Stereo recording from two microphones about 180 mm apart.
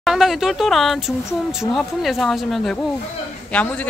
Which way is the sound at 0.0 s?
Centre (ahead or behind).